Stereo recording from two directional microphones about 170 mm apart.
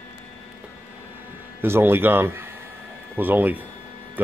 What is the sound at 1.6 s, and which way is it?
A man's voice, 15° right (ahead or behind).